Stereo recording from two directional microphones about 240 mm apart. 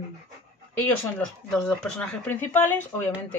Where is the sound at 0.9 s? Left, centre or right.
Centre.